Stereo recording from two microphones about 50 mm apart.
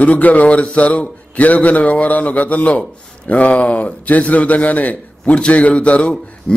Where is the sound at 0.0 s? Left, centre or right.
Left.